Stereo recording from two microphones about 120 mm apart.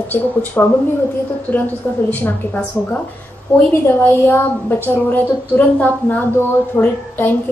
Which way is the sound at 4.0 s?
20° left (ahead or behind).